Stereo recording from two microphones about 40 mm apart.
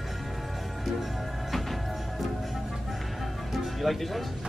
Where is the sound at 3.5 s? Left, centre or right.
Centre.